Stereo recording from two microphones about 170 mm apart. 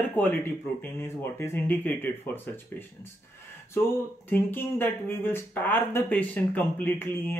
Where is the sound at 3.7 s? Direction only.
15° left (ahead or behind).